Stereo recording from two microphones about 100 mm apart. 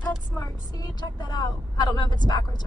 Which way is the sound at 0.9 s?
40° left (ahead or behind).